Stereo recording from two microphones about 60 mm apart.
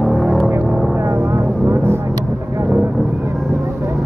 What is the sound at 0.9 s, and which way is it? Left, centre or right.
Vehicle, right.